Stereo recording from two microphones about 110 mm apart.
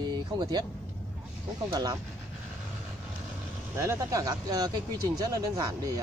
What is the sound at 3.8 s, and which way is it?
Speech, 30° right (ahead or behind).